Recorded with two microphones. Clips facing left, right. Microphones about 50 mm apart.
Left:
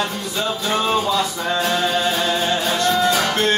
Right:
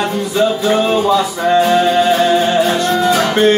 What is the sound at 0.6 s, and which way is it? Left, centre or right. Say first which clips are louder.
Music: right 7 dB; centre.